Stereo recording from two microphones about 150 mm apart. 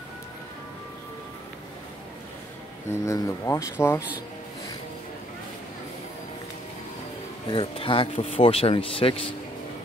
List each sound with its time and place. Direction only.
2.9 s speech: 20° left (ahead or behind)
7.5 s speech: 35° left (ahead or behind)